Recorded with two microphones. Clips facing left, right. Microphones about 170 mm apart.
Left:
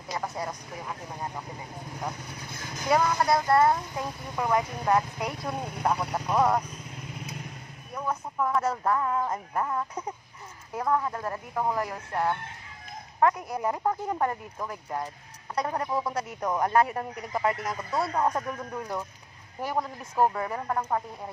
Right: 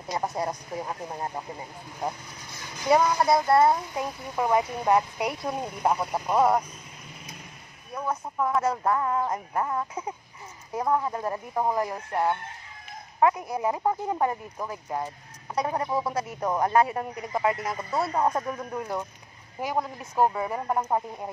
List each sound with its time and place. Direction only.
0.1 s speech: 25° right (ahead or behind)
2.9 s speech: 15° right (ahead or behind)
7.9 s speech: 5° right (ahead or behind)
17.6 s speech: 5° right (ahead or behind)